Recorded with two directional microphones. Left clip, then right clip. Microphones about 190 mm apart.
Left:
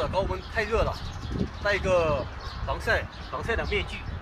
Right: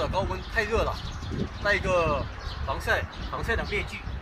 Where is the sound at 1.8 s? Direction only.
25° left (ahead or behind).